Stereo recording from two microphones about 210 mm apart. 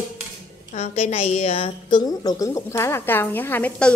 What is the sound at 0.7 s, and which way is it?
A woman's voice, 30° left (ahead or behind).